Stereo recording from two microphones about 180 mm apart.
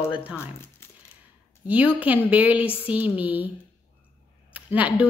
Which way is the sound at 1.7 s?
10° right (ahead or behind).